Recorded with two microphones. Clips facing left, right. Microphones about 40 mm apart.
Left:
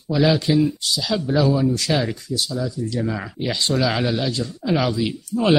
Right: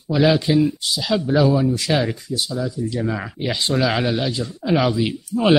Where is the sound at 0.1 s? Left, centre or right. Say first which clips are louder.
Right 1 dB; centre.